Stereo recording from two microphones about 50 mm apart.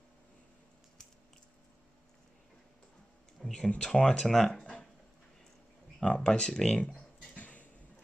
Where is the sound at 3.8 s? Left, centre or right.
Centre.